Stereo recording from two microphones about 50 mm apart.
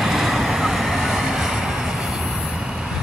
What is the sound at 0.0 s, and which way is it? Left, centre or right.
Vehicle, centre.